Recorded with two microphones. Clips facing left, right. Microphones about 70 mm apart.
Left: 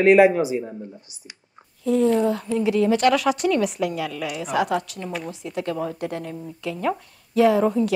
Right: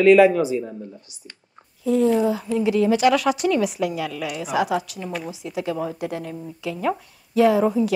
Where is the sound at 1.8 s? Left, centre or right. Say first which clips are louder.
Even; centre.